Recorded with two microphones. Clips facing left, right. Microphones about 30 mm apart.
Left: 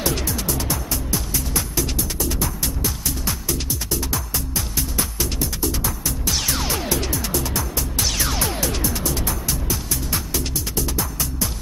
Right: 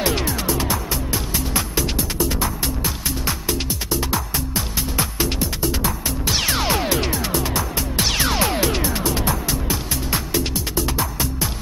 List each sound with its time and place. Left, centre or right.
0.0 s music: right